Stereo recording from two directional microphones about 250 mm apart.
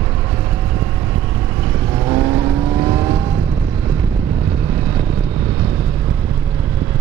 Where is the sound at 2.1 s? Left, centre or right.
Centre.